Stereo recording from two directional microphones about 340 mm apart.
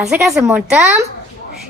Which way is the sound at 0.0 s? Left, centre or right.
Centre.